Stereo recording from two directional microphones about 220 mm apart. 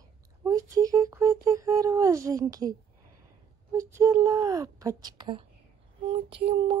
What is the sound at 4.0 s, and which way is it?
Speech, 15° right (ahead or behind).